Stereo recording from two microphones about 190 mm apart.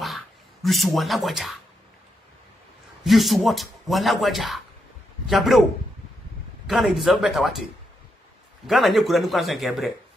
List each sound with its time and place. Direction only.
0.0 s a sound: centre (ahead or behind)
3.0 s a man's voice: centre (ahead or behind)
6.7 s a man's voice: centre (ahead or behind)
8.6 s a man's voice: centre (ahead or behind)